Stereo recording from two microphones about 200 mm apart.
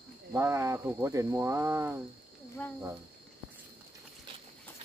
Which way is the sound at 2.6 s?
10° left (ahead or behind).